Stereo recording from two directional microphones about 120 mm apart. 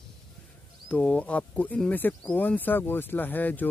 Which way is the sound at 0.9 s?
10° left (ahead or behind).